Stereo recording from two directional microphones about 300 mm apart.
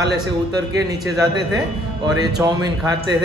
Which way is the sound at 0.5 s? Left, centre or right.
Centre.